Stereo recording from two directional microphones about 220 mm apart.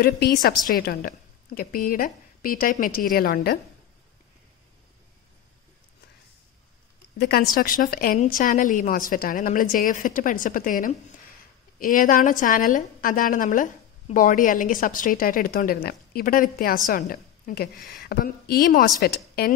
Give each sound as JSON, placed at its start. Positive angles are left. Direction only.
{"t": 0.0, "sound": "a woman's voice", "side_deg": 45}
{"t": 7.2, "sound": "a woman's voice", "side_deg": 45}